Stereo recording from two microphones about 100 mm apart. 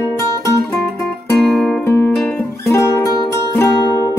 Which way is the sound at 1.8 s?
25° left (ahead or behind).